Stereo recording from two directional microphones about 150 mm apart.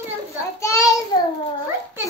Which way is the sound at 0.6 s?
20° left (ahead or behind).